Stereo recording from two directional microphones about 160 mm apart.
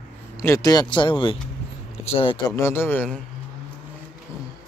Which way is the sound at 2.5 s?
15° left (ahead or behind).